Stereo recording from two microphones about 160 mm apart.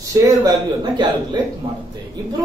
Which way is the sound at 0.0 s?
20° right (ahead or behind).